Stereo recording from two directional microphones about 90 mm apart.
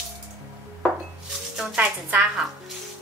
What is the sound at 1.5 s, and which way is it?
Speech, 15° right (ahead or behind).